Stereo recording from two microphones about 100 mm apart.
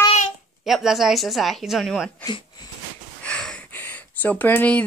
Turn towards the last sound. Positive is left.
turn(degrees=15)  # may be behind; listen again after turning